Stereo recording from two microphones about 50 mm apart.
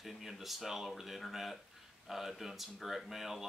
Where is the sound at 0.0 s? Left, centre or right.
Centre.